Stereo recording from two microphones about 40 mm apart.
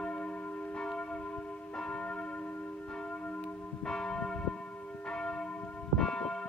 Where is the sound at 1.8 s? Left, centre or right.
Left.